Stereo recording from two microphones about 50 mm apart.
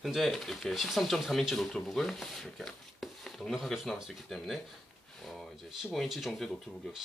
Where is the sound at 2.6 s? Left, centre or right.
Centre.